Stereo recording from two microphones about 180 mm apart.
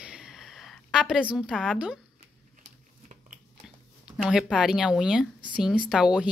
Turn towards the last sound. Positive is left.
turn(degrees=-5)  # may be behind; listen again after turning